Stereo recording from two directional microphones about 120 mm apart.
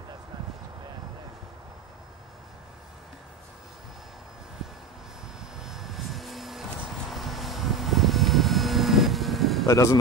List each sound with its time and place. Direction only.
5.7 s vehicle: centre (ahead or behind)
9.7 s speech: 25° left (ahead or behind)